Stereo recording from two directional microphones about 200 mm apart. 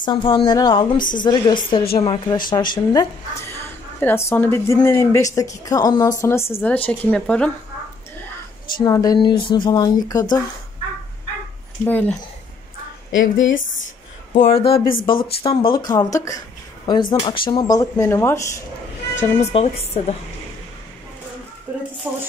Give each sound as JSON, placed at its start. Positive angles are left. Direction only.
{"t": 0.0, "sound": "a woman's voice", "side_deg": 25}
{"t": 8.8, "sound": "a woman's voice", "side_deg": 20}
{"t": 11.8, "sound": "a woman's voice", "side_deg": 5}
{"t": 13.1, "sound": "speech", "side_deg": 70}
{"t": 14.3, "sound": "speech", "side_deg": 30}
{"t": 19.1, "sound": "speech", "side_deg": 35}
{"t": 22.0, "sound": "speech", "side_deg": -10}